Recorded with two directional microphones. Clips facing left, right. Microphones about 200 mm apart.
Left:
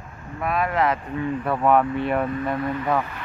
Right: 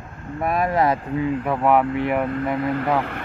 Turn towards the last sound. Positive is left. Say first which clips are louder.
# right 2 dB
turn(degrees=-80)